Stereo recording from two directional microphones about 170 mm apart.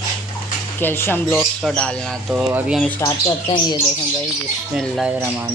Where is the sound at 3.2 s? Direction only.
25° left (ahead or behind).